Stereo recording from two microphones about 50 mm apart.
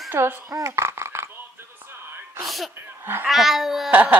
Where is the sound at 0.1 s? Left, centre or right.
Right.